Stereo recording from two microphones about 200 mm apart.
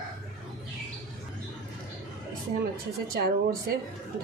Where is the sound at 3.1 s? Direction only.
50° right (ahead or behind).